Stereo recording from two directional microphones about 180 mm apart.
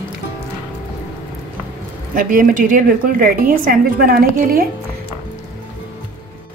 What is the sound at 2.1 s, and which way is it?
A woman's voice, 50° right (ahead or behind).